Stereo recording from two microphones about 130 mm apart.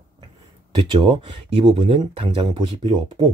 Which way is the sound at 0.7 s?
35° right (ahead or behind).